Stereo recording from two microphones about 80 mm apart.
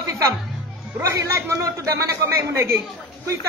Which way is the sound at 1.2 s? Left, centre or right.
Right.